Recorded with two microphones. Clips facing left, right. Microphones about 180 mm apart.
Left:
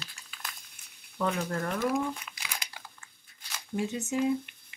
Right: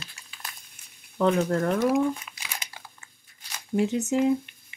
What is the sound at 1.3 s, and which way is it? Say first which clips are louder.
Speech: right 10 dB; 45° right (ahead or behind).